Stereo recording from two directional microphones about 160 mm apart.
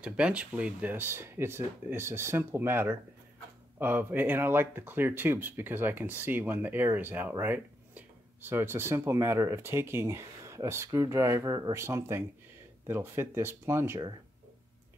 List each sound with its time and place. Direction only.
0.0 s speech: 5° right (ahead or behind)